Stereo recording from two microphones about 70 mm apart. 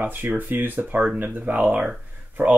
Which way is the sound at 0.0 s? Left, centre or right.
Right.